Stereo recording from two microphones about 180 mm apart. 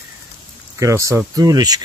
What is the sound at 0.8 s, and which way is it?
Speech, 15° right (ahead or behind).